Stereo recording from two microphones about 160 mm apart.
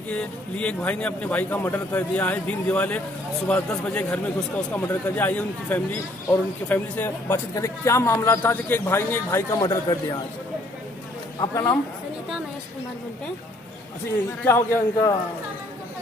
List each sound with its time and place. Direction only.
0.1 s speech: 10° left (ahead or behind); by 10.1 s 25° left (ahead or behind)
11.3 s speech: 20° left (ahead or behind)
14.4 s speech: 15° left (ahead or behind)